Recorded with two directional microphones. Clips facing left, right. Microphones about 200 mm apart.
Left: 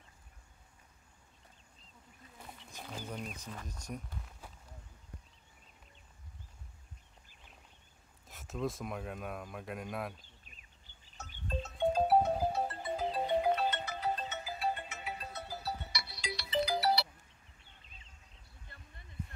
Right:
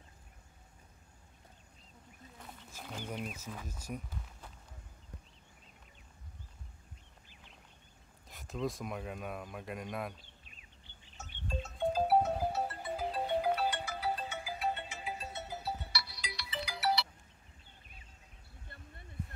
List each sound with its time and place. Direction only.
2.3 s wild animals: centre (ahead or behind)
3.1 s speech: 5° right (ahead or behind)
8.3 s speech: centre (ahead or behind)
11.6 s music: centre (ahead or behind)
14.7 s music: 30° right (ahead or behind)
15.9 s music: 20° left (ahead or behind)